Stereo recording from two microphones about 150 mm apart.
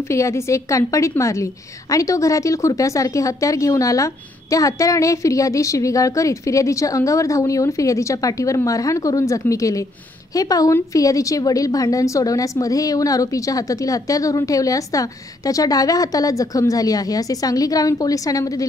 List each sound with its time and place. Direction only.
0.1 s a woman's voice: 20° left (ahead or behind)